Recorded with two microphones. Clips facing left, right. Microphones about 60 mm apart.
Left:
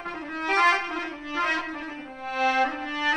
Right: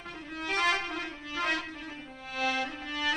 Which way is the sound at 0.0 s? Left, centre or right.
Left.